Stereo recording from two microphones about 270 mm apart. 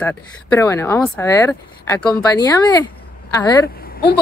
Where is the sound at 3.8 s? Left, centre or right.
Left.